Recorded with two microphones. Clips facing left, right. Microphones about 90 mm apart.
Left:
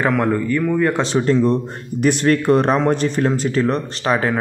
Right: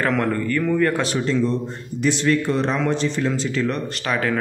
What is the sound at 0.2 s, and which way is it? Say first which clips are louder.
Speech: left 3 dB; 10° left (ahead or behind).